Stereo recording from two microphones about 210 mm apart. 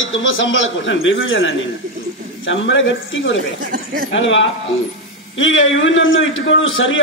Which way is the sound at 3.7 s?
40° right (ahead or behind).